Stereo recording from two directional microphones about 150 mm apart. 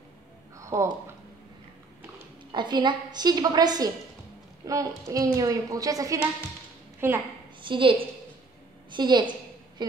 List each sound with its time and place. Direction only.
0.6 s a sound: 20° right (ahead or behind)
2.5 s a woman's voice: 30° right (ahead or behind); by 7.2 s 15° right (ahead or behind)
7.6 s a woman's voice: 35° right (ahead or behind)